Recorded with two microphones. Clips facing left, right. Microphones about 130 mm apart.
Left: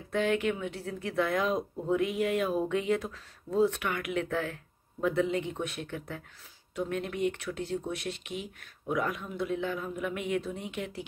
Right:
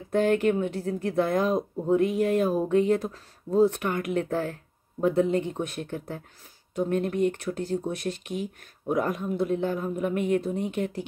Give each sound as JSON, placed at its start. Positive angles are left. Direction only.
{"t": 0.1, "sound": "speech", "side_deg": -45}